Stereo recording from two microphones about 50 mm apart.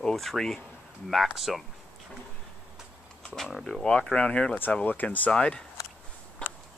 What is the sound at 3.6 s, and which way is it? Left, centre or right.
Speech, centre.